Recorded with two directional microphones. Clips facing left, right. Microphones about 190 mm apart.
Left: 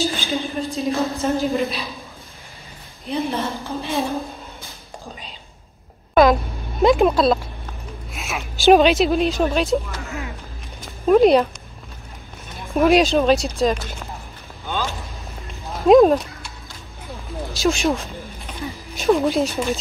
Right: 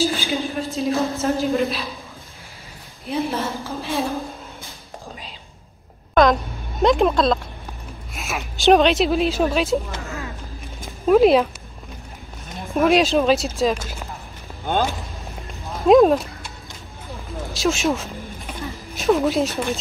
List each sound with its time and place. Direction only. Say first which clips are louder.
0.4 s a woman's voice: even; centre (ahead or behind)
3.1 s a woman's voice: even; centre (ahead or behind)
6.8 s a woman's voice: left 2 dB; centre (ahead or behind)
10.0 s a sound: left 1 dB; 15° left (ahead or behind)
11.1 s a woman's voice: left 1 dB; centre (ahead or behind)
12.5 s a woman's voice: left 2 dB; centre (ahead or behind)
14.7 s a sound: right 5 dB; 55° right (ahead or behind)
15.8 s a woman's voice: left 1 dB; centre (ahead or behind)
17.5 s a woman's voice: left 1 dB; centre (ahead or behind)